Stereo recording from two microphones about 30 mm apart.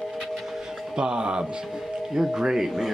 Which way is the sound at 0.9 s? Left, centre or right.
Right.